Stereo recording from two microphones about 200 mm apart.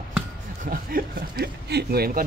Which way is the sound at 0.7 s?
45° right (ahead or behind).